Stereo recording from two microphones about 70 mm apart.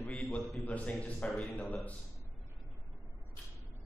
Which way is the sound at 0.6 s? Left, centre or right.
Left.